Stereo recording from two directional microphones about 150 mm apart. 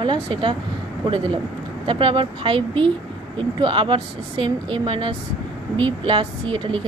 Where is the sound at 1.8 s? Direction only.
35° right (ahead or behind).